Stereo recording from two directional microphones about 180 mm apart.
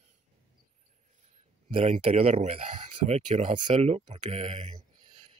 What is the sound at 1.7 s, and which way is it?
Speech, 35° right (ahead or behind).